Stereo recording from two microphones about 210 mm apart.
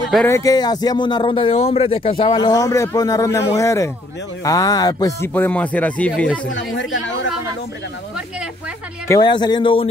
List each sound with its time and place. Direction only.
0.3 s speech: 15° left (ahead or behind)
6.5 s speech: 65° left (ahead or behind)
9.0 s speech: 15° left (ahead or behind)